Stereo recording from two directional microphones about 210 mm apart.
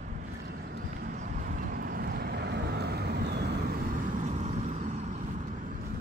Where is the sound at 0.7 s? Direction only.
45° right (ahead or behind).